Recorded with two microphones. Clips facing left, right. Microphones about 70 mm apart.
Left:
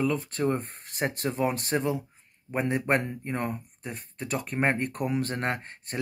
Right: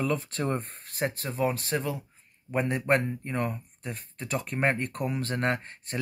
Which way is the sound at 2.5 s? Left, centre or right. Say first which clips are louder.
Even; centre.